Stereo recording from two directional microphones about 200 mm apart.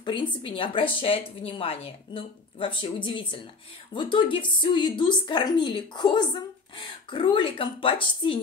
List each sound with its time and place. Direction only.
0.0 s a woman's voice: 25° left (ahead or behind)